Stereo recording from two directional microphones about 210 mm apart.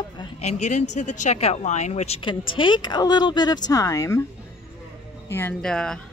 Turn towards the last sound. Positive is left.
turn(degrees=5)  # may be behind; listen again after turning